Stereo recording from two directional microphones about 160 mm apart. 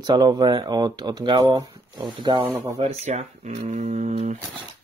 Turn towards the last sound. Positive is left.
turn(degrees=-45)  # may be behind; listen again after turning